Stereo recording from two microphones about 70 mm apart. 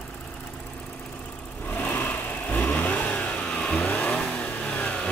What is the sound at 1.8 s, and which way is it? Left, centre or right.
Vehicle, left.